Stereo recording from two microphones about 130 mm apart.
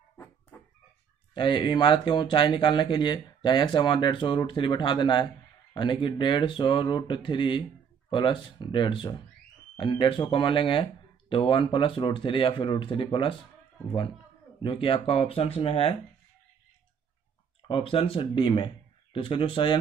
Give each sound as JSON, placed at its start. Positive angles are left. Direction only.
{"t": 1.3, "sound": "speech", "side_deg": 35}
{"t": 14.6, "sound": "speech", "side_deg": 40}
{"t": 17.6, "sound": "speech", "side_deg": 45}